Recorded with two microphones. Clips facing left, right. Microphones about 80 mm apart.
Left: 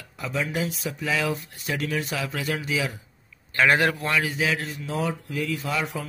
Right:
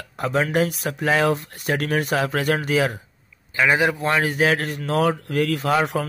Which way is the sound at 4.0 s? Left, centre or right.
Right.